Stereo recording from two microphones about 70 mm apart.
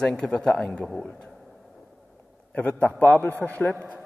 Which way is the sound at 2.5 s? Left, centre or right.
Left.